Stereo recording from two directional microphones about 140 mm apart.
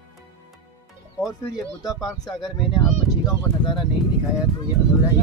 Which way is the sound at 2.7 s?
35° left (ahead or behind).